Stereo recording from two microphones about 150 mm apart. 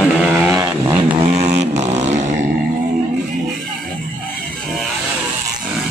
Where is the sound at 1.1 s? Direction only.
45° right (ahead or behind).